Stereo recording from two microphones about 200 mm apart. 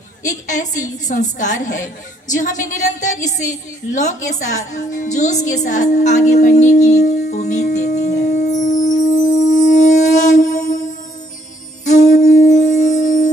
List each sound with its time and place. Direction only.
0.2 s a woman's voice: 40° left (ahead or behind)
7.0 s music: 50° left (ahead or behind)